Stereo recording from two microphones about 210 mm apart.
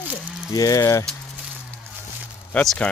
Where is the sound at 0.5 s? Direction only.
15° left (ahead or behind).